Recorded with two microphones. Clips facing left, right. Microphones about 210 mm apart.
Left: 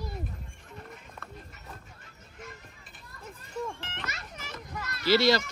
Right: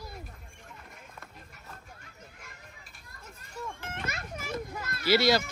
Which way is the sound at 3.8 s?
50° right (ahead or behind).